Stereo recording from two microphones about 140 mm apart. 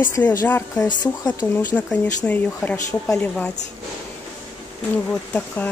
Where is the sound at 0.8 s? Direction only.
30° left (ahead or behind).